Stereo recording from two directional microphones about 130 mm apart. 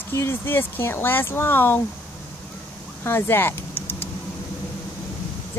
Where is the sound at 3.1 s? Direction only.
20° left (ahead or behind).